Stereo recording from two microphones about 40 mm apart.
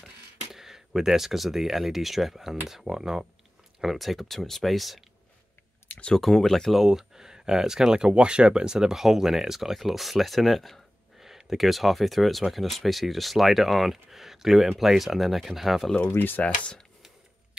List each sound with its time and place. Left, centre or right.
0.0 s speech: centre
3.8 s speech: centre
5.9 s a sound: left
6.2 s speech: centre
6.7 s speech: centre
7.9 s speech: right; by 15.9 s centre
16.2 s speech: left
16.4 s speech: left